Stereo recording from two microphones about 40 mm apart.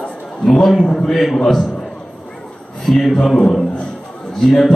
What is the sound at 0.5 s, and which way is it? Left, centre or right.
Speech, centre.